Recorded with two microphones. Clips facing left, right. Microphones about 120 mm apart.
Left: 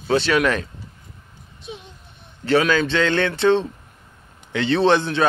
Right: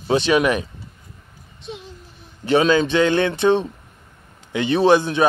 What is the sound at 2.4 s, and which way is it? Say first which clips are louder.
Speech: right 2 dB; 20° right (ahead or behind).